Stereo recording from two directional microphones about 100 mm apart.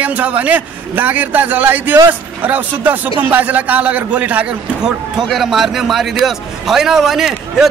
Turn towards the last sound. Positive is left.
turn(degrees=-5)  # may be behind; listen again after turning